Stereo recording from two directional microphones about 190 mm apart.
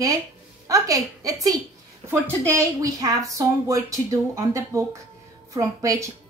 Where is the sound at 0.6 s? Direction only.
15° right (ahead or behind).